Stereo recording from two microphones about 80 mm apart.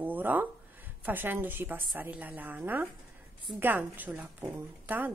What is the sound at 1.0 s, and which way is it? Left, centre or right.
Speech, right.